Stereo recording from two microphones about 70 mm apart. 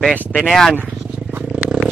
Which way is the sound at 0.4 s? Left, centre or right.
Centre.